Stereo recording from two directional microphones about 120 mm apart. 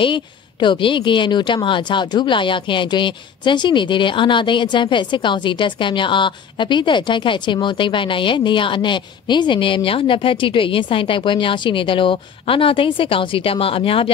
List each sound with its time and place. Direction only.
0.0 s speech: 40° left (ahead or behind)